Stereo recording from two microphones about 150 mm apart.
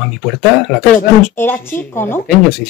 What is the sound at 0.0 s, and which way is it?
Speech, centre (ahead or behind).